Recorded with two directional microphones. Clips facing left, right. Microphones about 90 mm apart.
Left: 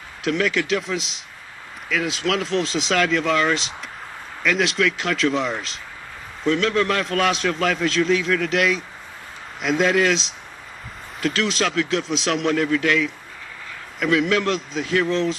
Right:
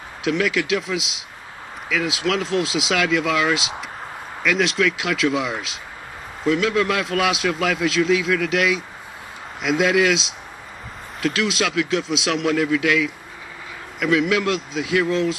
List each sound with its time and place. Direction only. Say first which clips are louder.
0.2 s a man's voice: right 1 dB; centre (ahead or behind)